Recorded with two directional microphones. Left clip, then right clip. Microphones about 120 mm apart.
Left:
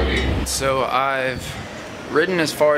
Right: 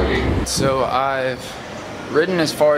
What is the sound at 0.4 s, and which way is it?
Speech, 5° left (ahead or behind).